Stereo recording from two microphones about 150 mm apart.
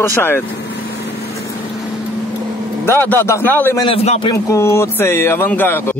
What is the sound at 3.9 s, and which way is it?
Speech, 40° left (ahead or behind).